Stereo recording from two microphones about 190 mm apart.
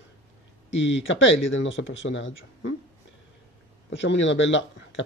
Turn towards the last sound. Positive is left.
turn(degrees=75)  # may be behind; listen again after turning